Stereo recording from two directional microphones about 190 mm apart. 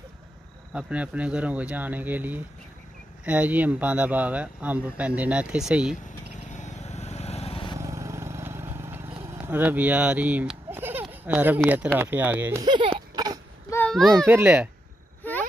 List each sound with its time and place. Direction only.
0.7 s speech: 5° right (ahead or behind)
6.3 s vehicle: 40° left (ahead or behind)
7.8 s vehicle: 15° right (ahead or behind)
9.2 s speech: 10° right (ahead or behind)
12.6 s a sound: 25° right (ahead or behind)
13.7 s a sound: 10° left (ahead or behind)
14.2 s speech: 10° right (ahead or behind)